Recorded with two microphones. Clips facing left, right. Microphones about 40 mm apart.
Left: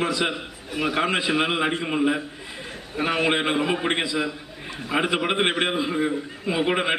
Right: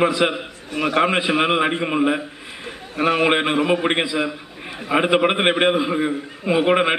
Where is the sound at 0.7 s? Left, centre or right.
Centre.